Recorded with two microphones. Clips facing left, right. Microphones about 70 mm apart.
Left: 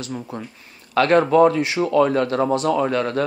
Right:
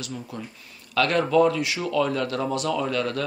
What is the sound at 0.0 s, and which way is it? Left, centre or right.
Speech, left.